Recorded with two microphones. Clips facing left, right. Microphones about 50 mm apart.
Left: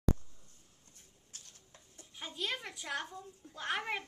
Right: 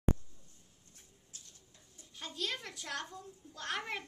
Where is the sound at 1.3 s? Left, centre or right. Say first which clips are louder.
Left 1 dB; left.